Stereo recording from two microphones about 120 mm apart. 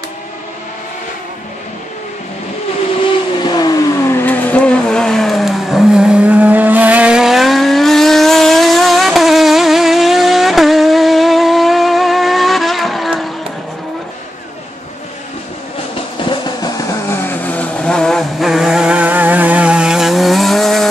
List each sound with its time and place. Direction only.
3.4 s vehicle: 35° left (ahead or behind)
4.0 s vehicle: 15° left (ahead or behind); by 13.3 s centre (ahead or behind)
16.3 s a sound: 35° left (ahead or behind)
17.5 s vehicle: 10° left (ahead or behind)